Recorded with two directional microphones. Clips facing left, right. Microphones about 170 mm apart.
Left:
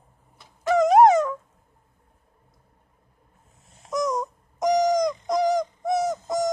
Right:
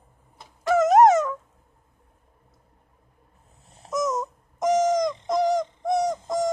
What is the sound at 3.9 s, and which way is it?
Wail, 5° right (ahead or behind).